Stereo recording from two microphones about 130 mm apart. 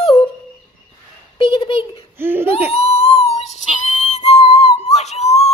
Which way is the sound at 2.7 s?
50° left (ahead or behind).